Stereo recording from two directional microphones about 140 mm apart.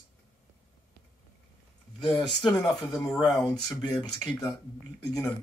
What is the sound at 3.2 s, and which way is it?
Speech, 25° left (ahead or behind).